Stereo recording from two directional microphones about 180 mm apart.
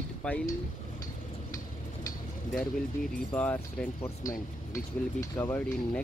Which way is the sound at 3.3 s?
10° left (ahead or behind).